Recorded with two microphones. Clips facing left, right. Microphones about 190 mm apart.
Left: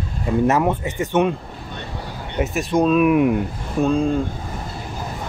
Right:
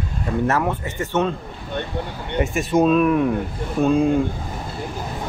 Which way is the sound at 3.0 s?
10° left (ahead or behind).